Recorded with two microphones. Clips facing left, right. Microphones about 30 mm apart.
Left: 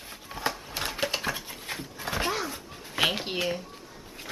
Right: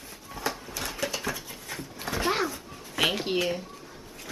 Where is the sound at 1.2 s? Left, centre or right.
Left.